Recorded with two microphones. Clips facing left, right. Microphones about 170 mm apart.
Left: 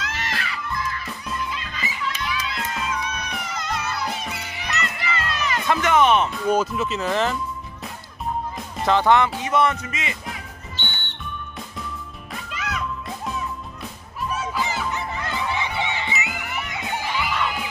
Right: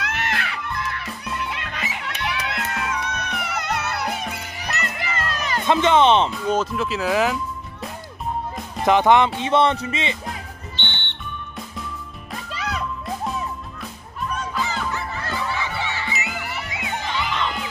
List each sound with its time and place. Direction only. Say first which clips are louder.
0.0 s music: right 3 dB; 60° right (ahead or behind)
4.6 s music: even; 40° right (ahead or behind)
5.7 s music: right 2 dB; 25° right (ahead or behind)
6.4 s speech: left 1 dB; centre (ahead or behind)
8.8 s music: right 2 dB; 20° right (ahead or behind)
10.8 s music: right 1 dB; 40° left (ahead or behind)
12.5 s music: right 2 dB; 35° right (ahead or behind)
14.3 s fowl: left 1 dB; 5° left (ahead or behind)
14.9 s a sound: even; 20° left (ahead or behind)
16.9 s music: even; 10° left (ahead or behind)